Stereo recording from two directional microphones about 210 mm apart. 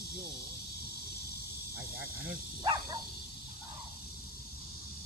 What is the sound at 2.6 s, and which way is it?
Speech, 20° right (ahead or behind).